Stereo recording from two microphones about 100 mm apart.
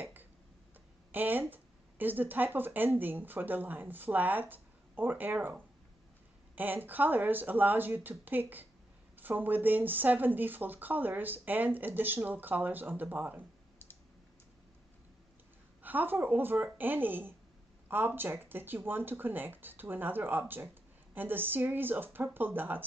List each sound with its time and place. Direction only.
0.0 s a sound: 20° right (ahead or behind)
1.1 s speech: 20° right (ahead or behind)
15.8 s speech: 15° right (ahead or behind)